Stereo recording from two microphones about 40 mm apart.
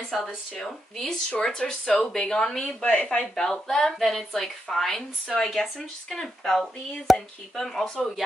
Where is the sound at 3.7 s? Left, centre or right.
Centre.